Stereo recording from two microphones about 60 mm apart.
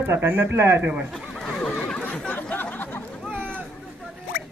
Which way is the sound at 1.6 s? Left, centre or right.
Centre.